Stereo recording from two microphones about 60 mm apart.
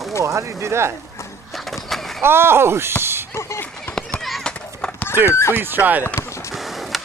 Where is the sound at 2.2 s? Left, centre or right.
Right.